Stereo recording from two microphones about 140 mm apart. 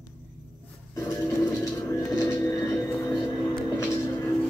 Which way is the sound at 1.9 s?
20° left (ahead or behind).